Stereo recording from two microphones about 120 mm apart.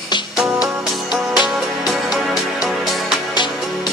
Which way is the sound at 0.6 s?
5° right (ahead or behind).